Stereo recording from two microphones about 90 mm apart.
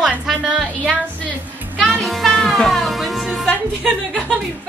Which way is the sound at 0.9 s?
10° left (ahead or behind).